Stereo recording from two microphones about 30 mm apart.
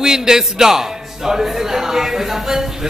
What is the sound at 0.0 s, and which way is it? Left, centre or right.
A man's voice, centre.